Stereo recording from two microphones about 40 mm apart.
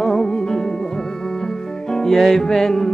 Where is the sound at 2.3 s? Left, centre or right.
Centre.